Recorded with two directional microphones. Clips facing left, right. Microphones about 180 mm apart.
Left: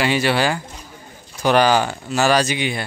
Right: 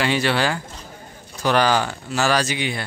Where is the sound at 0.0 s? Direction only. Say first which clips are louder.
Left 2 dB; 10° left (ahead or behind).